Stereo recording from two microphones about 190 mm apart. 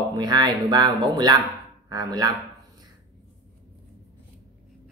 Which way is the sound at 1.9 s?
20° right (ahead or behind).